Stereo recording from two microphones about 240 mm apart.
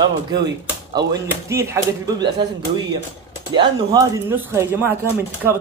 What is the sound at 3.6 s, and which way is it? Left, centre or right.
Speech, centre.